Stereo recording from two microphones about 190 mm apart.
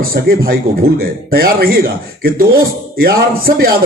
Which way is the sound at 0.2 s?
55° right (ahead or behind).